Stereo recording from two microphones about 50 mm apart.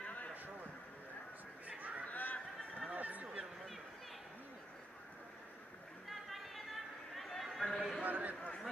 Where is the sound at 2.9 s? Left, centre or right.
Right.